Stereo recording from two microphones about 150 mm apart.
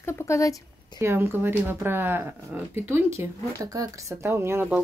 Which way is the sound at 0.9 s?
15° right (ahead or behind).